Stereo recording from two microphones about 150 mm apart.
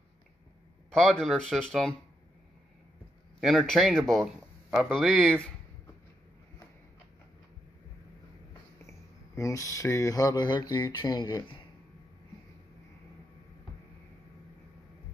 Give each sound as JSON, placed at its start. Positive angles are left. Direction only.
{"t": 0.9, "sound": "speech", "side_deg": 5}
{"t": 3.3, "sound": "speech", "side_deg": 0}
{"t": 4.1, "sound": "a sound", "side_deg": 0}
{"t": 4.9, "sound": "speech", "side_deg": 0}
{"t": 9.3, "sound": "speech", "side_deg": 20}